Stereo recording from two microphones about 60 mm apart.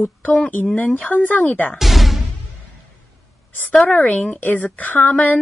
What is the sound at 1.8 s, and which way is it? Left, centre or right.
Music, centre.